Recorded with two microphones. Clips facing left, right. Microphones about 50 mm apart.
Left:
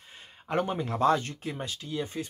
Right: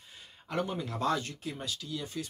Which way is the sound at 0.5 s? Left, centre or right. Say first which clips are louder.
Left 5 dB; left.